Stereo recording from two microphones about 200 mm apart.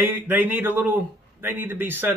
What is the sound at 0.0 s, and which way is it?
Speech, 10° right (ahead or behind).